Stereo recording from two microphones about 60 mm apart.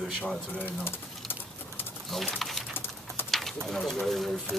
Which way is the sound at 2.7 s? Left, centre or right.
Left.